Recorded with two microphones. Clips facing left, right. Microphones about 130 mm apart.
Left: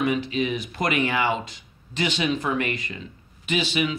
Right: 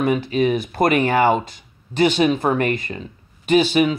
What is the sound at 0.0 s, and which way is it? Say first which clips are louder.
Speech: right 5 dB; 45° right (ahead or behind).